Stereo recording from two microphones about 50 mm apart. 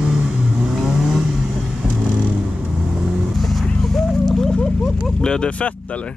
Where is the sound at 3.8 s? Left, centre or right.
Centre.